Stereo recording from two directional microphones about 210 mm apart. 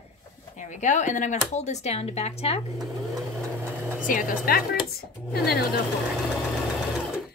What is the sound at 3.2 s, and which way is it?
Sewing machine, 10° right (ahead or behind).